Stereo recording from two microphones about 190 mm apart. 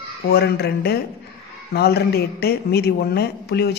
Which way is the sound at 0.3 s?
55° left (ahead or behind).